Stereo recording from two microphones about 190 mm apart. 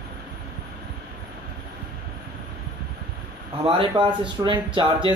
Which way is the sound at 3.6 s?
25° right (ahead or behind).